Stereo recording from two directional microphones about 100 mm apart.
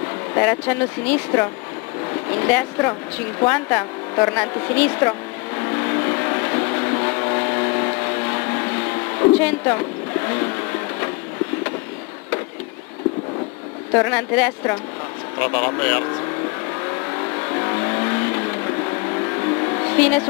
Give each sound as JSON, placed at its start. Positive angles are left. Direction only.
{"t": 0.3, "sound": "speech", "side_deg": 20}
{"t": 5.6, "sound": "vehicle", "side_deg": 25}
{"t": 9.8, "sound": "a sound", "side_deg": 25}
{"t": 13.9, "sound": "speech", "side_deg": 20}
{"t": 17.4, "sound": "vehicle", "side_deg": 25}